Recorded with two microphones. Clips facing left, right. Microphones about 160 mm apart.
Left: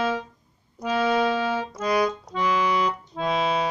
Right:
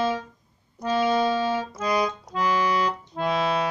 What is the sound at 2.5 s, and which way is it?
Accordion, 35° right (ahead or behind).